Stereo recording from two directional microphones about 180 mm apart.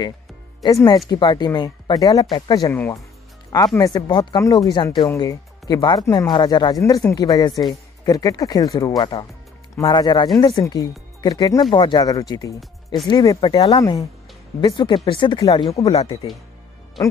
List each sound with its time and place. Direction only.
0.8 s speech: 25° left (ahead or behind)
12.5 s speech: centre (ahead or behind)
13.1 s speech: 20° left (ahead or behind)